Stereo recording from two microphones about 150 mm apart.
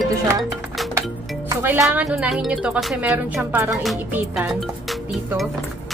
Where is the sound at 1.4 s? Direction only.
15° right (ahead or behind).